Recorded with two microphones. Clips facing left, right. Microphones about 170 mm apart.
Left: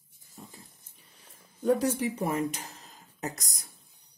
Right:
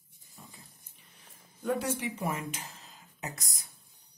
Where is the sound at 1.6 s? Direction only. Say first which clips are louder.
Left 6 dB; 40° left (ahead or behind).